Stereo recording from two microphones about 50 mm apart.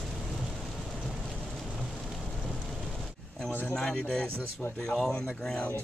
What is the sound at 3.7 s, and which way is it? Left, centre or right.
Speech, centre.